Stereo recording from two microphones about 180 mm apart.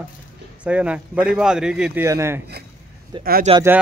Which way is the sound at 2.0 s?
15° right (ahead or behind).